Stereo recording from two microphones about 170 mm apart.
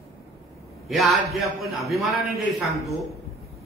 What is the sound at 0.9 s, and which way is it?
A man's voice, centre (ahead or behind).